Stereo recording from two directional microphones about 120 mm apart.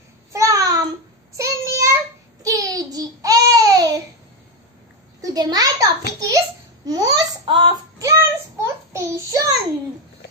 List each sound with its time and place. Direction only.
0.3 s babbling: 30° right (ahead or behind)
1.3 s child singing: 25° right (ahead or behind)
2.4 s babbling: 30° right (ahead or behind)
5.2 s a sound: 35° right (ahead or behind)
8.0 s child singing: 25° right (ahead or behind)